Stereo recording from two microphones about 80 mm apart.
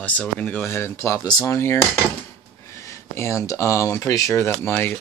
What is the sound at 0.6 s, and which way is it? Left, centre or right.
Speech, left.